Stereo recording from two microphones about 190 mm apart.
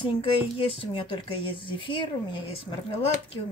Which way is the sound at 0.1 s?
30° left (ahead or behind).